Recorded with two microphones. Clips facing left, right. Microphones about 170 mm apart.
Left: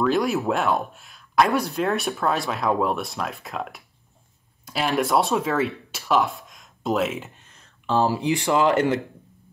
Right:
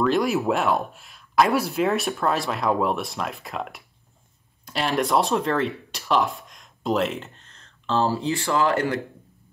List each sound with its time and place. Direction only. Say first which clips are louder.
0.0 s speech: even; centre (ahead or behind)
5.9 s a sound: left 1 dB; 5° left (ahead or behind)
7.2 s speech: left 1 dB; 10° left (ahead or behind)